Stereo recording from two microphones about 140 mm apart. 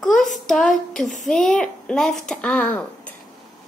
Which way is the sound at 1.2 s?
5° left (ahead or behind).